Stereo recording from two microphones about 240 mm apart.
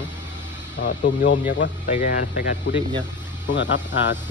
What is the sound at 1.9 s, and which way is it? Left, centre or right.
Speech, left.